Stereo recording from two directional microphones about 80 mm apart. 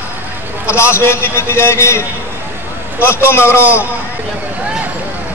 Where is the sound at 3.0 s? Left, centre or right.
Left.